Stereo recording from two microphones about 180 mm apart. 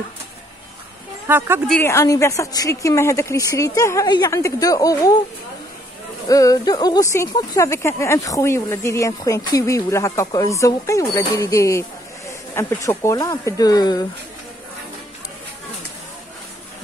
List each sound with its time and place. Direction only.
1.2 s speech: 15° right (ahead or behind)
1.7 s speech: 15° left (ahead or behind)
6.2 s speech: 20° left (ahead or behind)